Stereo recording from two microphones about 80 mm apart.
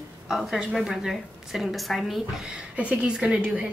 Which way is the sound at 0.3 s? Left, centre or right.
Centre.